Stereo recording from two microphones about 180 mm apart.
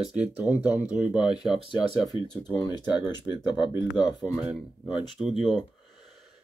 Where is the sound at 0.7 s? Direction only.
10° right (ahead or behind).